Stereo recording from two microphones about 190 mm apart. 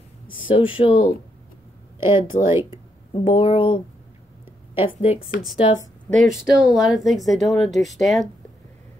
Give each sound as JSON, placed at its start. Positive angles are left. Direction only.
{"t": 0.3, "sound": "speech", "side_deg": 25}
{"t": 2.0, "sound": "speech", "side_deg": -10}
{"t": 3.1, "sound": "speech", "side_deg": 25}
{"t": 4.8, "sound": "a woman's voice", "side_deg": 30}
{"t": 6.0, "sound": "speech", "side_deg": 0}